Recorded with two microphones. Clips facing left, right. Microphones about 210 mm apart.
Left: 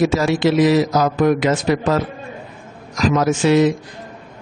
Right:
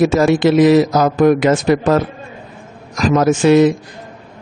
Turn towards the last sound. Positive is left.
turn(degrees=-50)  # may be behind; listen again after turning